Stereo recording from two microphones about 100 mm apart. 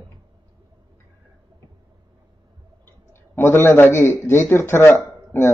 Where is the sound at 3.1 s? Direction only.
25° left (ahead or behind).